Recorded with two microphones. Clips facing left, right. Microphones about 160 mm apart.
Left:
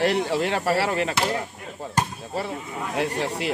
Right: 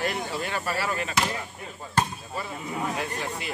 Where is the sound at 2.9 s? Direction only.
75° left (ahead or behind).